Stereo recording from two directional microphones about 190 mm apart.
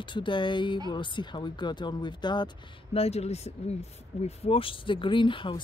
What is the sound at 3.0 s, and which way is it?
Speech, 35° left (ahead or behind).